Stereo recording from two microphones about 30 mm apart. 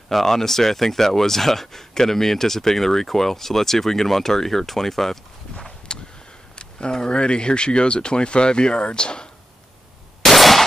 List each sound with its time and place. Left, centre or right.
0.1 s speech: centre
5.9 s a sound: left
7.2 s speech: left
10.2 s gunshot: centre